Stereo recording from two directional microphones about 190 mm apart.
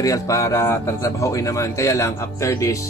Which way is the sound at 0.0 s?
15° left (ahead or behind).